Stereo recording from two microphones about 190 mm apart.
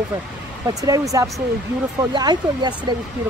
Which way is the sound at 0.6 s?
20° right (ahead or behind).